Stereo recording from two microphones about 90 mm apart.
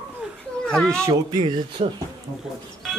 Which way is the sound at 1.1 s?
45° right (ahead or behind).